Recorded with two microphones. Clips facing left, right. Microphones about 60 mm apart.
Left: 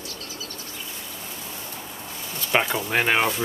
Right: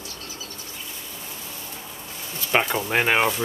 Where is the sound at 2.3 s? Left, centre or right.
Centre.